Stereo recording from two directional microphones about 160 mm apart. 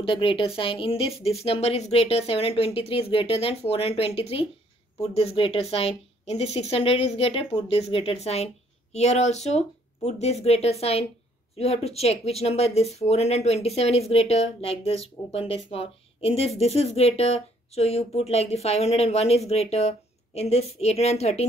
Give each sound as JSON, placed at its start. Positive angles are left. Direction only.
{"t": 0.0, "sound": "speech", "side_deg": 30}